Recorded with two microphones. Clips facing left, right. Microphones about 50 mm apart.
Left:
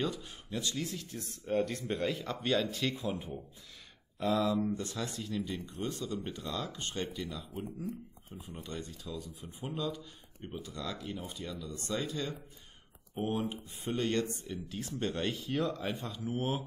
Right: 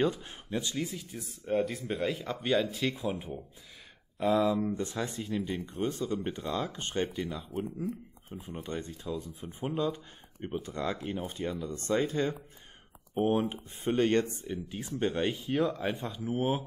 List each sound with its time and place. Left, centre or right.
0.0 s speech: right
0.8 s speech: centre
4.2 s speech: centre
4.6 s speech: right
7.5 s speech: centre
8.4 s speech: right
14.5 s speech: right